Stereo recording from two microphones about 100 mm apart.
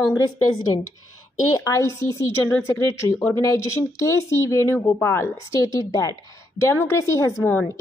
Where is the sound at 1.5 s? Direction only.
35° left (ahead or behind).